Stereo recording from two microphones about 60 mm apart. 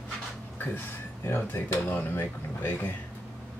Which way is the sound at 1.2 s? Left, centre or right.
Left.